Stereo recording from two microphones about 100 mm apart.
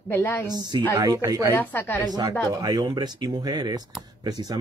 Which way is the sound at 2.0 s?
40° right (ahead or behind).